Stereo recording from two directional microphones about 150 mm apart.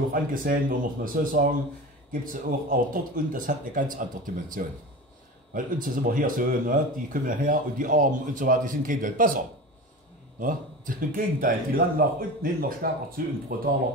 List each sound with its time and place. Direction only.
0.1 s speech: 70° right (ahead or behind)
10.4 s speech: 65° right (ahead or behind)